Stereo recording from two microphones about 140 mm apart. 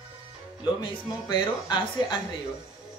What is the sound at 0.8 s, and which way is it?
Speech, 30° left (ahead or behind).